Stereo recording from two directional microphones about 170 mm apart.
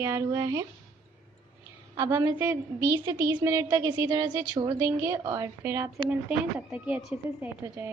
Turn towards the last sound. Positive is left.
turn(degrees=-10)  # may be behind; listen again after turning